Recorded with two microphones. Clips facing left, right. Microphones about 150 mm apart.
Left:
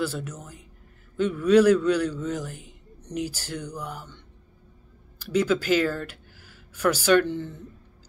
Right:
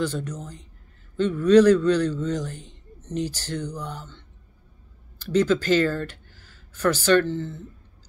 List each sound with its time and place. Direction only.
0.0 s a man's voice: 10° left (ahead or behind)
5.2 s speech: 10° left (ahead or behind)